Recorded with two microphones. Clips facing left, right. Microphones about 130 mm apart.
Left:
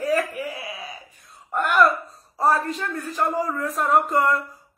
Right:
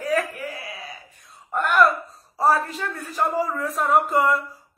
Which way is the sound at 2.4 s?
Centre (ahead or behind).